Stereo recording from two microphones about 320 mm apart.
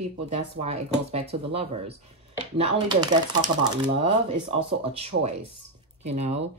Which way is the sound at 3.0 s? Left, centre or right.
Centre.